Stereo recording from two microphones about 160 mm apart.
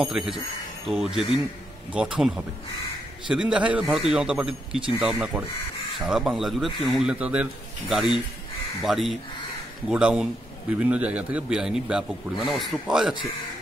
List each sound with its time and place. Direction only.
0.0 s a man's voice: 5° right (ahead or behind)